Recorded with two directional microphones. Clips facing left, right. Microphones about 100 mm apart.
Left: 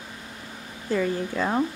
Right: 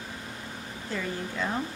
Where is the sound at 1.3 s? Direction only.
50° left (ahead or behind).